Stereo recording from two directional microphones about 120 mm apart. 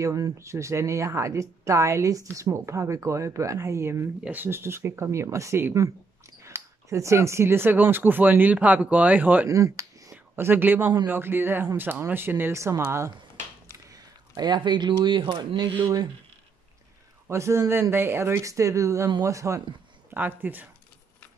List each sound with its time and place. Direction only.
0.0 s speech: 25° right (ahead or behind)
9.5 s speech: 25° right (ahead or behind)
10.1 s speech: 20° right (ahead or behind)
13.8 s speech: 30° right (ahead or behind)
17.3 s speech: 25° right (ahead or behind)